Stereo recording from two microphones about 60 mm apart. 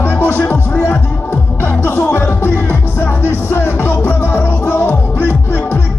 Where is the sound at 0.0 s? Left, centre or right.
Left.